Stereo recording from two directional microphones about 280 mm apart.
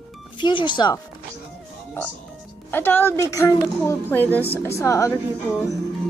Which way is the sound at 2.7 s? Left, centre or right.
Centre.